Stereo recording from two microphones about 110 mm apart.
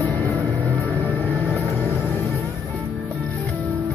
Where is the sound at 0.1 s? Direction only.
15° left (ahead or behind).